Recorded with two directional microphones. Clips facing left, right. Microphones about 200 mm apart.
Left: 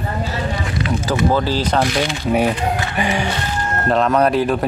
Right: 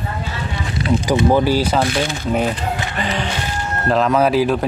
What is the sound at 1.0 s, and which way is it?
Speech, 15° right (ahead or behind).